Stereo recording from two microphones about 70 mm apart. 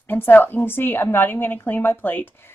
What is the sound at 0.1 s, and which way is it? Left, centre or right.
Speech, left.